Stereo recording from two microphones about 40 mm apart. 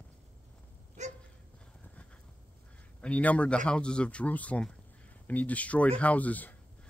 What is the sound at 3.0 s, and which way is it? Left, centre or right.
Speech, left.